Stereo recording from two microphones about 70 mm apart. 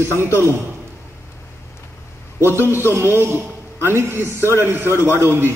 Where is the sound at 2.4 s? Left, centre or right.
Right.